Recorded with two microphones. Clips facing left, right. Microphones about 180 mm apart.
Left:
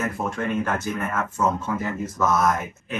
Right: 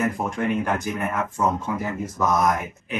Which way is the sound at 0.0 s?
15° right (ahead or behind).